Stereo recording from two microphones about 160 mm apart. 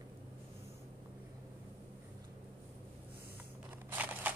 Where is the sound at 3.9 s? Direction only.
10° right (ahead or behind).